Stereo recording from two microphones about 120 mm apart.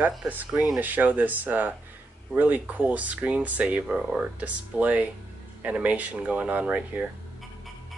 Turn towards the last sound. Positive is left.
turn(degrees=-10)  # may be behind; listen again after turning